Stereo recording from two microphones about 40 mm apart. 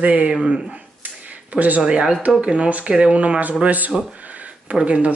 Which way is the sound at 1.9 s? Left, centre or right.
Right.